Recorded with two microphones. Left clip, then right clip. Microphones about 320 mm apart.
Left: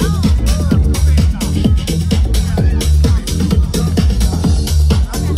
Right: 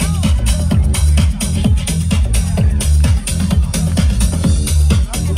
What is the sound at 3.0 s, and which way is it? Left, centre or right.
Music, right.